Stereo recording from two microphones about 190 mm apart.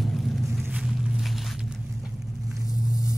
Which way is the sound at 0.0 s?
Centre (ahead or behind).